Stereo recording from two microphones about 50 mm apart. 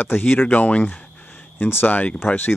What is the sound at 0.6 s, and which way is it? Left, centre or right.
Speech, left.